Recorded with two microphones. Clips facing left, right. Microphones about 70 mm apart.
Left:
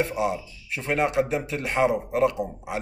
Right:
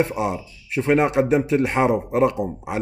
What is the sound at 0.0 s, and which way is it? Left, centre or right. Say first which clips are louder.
Speech: right 3 dB; right.